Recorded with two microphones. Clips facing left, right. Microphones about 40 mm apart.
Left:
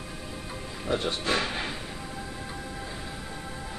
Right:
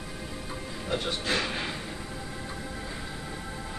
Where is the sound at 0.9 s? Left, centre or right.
Left.